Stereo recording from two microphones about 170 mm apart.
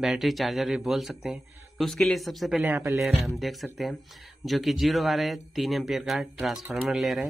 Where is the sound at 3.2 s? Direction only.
Centre (ahead or behind).